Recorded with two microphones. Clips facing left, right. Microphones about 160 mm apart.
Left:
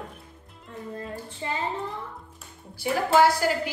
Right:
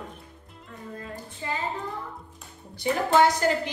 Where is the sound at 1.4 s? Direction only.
25° left (ahead or behind).